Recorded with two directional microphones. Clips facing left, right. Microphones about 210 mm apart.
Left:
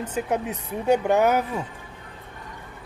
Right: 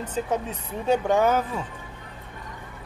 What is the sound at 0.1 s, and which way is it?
Speech, 10° left (ahead or behind).